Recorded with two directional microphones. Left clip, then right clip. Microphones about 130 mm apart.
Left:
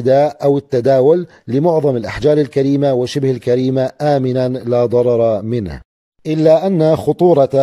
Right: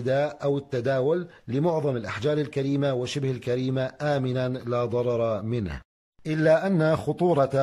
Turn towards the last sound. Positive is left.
turn(degrees=30)  # may be behind; listen again after turning